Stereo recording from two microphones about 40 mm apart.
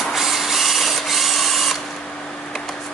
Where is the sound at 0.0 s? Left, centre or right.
Centre.